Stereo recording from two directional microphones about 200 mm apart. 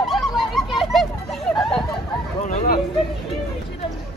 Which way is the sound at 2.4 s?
45° left (ahead or behind).